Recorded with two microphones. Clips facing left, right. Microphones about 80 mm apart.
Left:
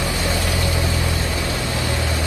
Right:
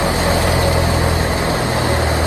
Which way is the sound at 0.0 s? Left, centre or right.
Right.